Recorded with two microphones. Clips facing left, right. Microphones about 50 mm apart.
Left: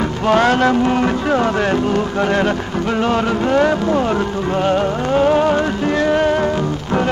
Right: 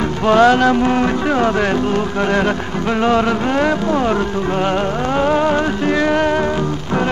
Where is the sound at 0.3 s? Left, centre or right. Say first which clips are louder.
Right 3 dB; centre.